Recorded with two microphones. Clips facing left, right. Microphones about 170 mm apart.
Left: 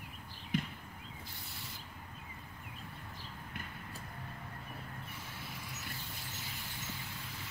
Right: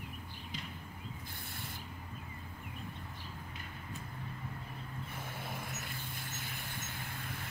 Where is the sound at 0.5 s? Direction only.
60° left (ahead or behind).